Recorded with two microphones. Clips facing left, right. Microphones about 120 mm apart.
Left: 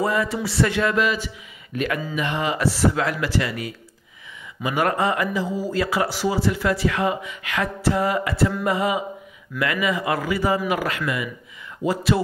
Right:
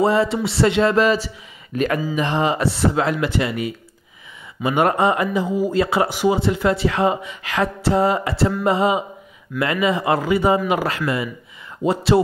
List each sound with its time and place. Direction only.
0.0 s speech: 25° right (ahead or behind)
0.9 s speech: 35° right (ahead or behind)